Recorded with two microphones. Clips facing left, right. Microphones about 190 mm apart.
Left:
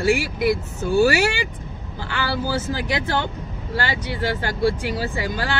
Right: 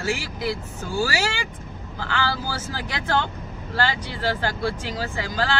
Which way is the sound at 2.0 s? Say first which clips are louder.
Left 1 dB; 20° left (ahead or behind).